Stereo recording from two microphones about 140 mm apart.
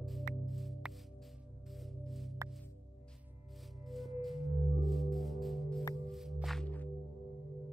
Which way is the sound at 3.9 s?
Centre (ahead or behind).